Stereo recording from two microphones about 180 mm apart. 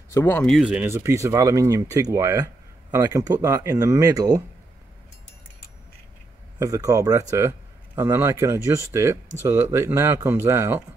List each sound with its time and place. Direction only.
0.1 s speech: 10° left (ahead or behind)
0.7 s speech: 10° right (ahead or behind)
6.6 s speech: 20° right (ahead or behind)